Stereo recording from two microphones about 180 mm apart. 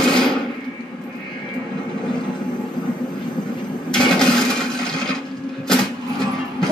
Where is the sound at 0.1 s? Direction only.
5° left (ahead or behind).